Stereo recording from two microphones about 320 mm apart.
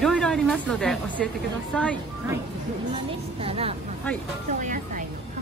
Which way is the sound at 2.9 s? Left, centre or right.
Centre.